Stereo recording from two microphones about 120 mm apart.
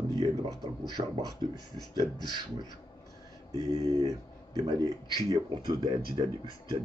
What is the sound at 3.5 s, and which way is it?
Speech, 30° right (ahead or behind).